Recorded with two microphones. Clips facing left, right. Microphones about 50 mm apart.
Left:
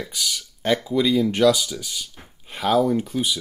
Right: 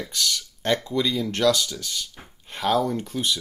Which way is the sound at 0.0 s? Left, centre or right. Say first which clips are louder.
Right 1 dB; centre.